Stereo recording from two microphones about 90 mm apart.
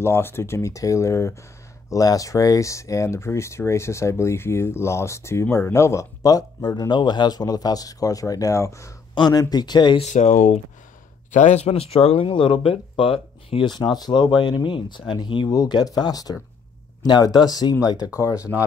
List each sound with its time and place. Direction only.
0.0 s speech: 30° left (ahead or behind)
9.1 s speech: 50° left (ahead or behind)
11.7 s speech: 90° left
13.7 s speech: 50° left (ahead or behind)